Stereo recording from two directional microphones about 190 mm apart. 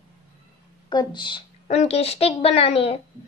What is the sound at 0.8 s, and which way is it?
A woman's voice, 25° left (ahead or behind).